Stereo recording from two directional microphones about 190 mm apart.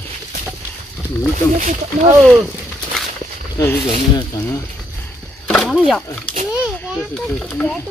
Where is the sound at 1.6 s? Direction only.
40° right (ahead or behind).